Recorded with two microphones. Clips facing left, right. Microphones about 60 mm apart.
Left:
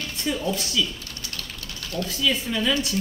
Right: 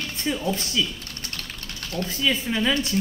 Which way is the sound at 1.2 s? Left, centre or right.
Right.